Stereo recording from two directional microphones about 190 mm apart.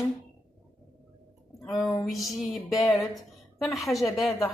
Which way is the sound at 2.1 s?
Centre (ahead or behind).